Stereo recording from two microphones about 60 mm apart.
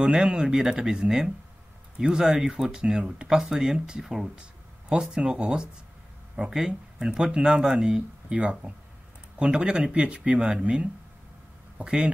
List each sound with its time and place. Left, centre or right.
0.0 s speech: centre
8.4 s speech: right